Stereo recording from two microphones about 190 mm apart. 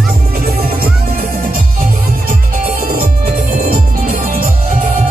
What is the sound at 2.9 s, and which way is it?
Music, 50° right (ahead or behind).